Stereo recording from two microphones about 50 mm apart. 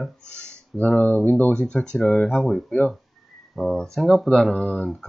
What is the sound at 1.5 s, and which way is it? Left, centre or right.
Speech, centre.